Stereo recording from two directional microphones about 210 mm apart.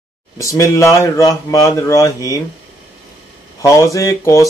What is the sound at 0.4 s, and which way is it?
Speech, 15° left (ahead or behind).